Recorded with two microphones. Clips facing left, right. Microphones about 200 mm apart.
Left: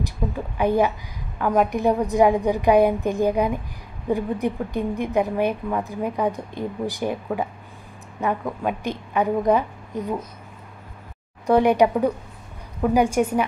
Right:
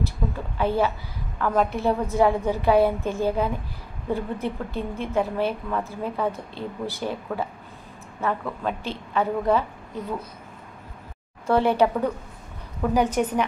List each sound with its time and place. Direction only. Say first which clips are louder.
0.2 s a woman's voice: left 4 dB; 15° left (ahead or behind)
11.4 s a woman's voice: left 3 dB; 15° left (ahead or behind)